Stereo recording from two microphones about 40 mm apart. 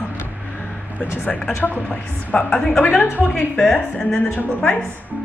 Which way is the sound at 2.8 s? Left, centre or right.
Left.